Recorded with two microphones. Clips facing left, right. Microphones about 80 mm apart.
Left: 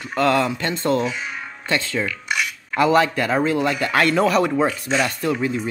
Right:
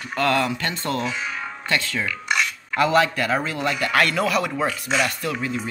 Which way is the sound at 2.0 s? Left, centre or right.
Centre.